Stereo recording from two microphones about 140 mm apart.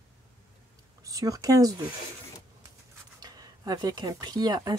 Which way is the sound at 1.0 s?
25° right (ahead or behind).